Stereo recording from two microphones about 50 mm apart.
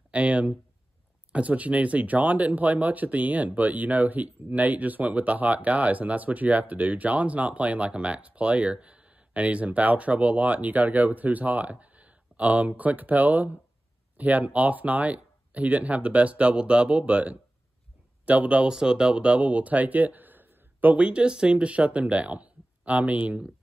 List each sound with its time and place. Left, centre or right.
0.1 s a sound: right
1.3 s speech: right
18.7 s speech: centre